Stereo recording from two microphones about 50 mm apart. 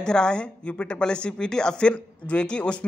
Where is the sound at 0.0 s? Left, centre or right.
Centre.